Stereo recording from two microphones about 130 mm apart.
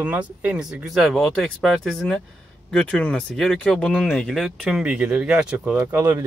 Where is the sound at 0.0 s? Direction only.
10° right (ahead or behind).